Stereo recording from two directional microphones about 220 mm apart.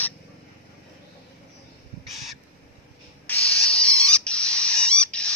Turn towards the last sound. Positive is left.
turn(degrees=5)  # may be behind; listen again after turning